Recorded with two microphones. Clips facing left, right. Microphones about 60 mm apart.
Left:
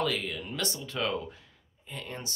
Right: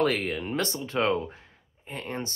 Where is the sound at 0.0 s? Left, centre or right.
Right.